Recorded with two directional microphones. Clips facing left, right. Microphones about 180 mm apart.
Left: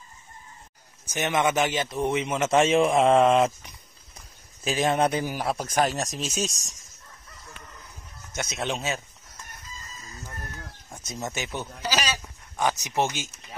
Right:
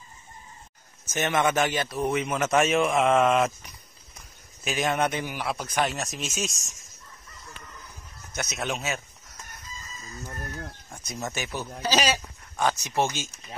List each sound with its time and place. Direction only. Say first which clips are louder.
1.0 s speech: even; 15° left (ahead or behind)
4.6 s speech: left 3 dB; 30° left (ahead or behind)
8.4 s speech: left 1 dB; 25° left (ahead or behind)
10.9 s speech: left 2 dB; 25° left (ahead or behind)